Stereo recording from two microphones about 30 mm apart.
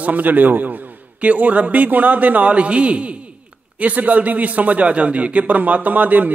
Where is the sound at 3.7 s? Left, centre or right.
Right.